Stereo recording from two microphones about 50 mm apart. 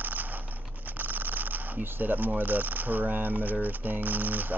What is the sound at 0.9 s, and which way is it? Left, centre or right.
Speech, right.